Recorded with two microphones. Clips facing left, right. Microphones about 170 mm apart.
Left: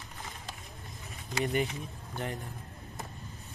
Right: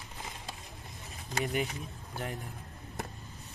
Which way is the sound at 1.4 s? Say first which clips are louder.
Left 3 dB; centre (ahead or behind).